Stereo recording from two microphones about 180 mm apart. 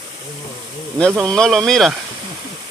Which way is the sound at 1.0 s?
5° left (ahead or behind).